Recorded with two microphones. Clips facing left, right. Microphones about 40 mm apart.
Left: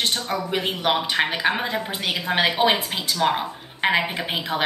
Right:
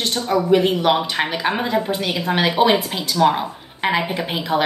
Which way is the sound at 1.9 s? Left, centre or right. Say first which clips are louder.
Right 4 dB; centre.